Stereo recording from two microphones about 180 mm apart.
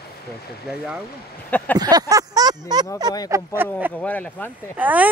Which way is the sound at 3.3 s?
10° right (ahead or behind).